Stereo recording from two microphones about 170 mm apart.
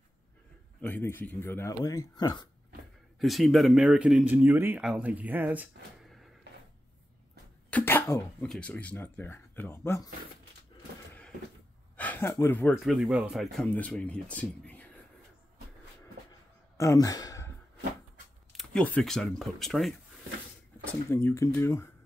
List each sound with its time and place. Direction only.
0.7 s speech: 10° left (ahead or behind)
3.2 s speech: centre (ahead or behind)
6.0 s a sound: centre (ahead or behind)
7.7 s speech: 10° left (ahead or behind)
12.0 s speech: 10° left (ahead or behind)
12.7 s speech: centre (ahead or behind)
16.7 s speech: 20° left (ahead or behind)
18.5 s speech: centre (ahead or behind)
20.8 s speech: 15° left (ahead or behind)